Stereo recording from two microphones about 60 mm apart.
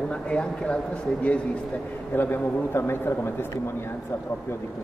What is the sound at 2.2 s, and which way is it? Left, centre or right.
A man's voice, left.